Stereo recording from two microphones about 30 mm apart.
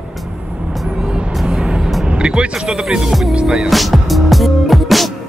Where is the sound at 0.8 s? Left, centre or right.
Centre; by 2.5 s right.